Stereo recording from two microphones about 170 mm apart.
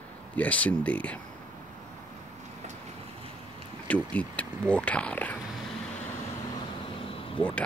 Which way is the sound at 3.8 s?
10° left (ahead or behind).